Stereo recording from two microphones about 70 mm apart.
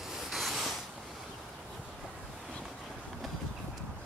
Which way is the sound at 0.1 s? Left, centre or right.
Centre.